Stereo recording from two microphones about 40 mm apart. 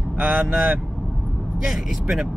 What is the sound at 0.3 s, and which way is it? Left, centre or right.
Speech, centre.